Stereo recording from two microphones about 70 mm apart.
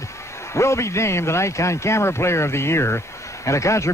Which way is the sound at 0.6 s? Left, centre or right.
Left.